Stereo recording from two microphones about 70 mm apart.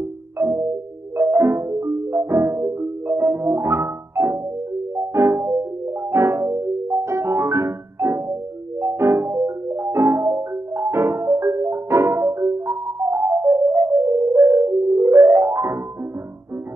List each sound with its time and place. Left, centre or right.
0.4 s marimba: right
1.1 s music: right